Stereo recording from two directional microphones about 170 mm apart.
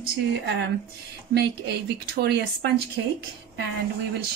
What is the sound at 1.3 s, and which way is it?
Speech, 75° right (ahead or behind).